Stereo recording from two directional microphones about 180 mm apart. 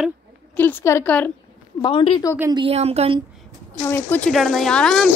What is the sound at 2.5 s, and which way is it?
Speech, 30° right (ahead or behind).